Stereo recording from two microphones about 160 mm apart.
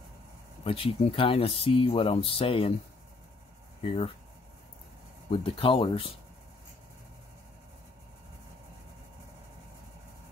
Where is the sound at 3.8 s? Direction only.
35° left (ahead or behind).